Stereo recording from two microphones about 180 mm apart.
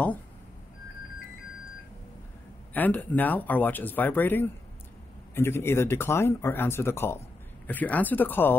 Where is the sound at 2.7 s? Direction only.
10° left (ahead or behind).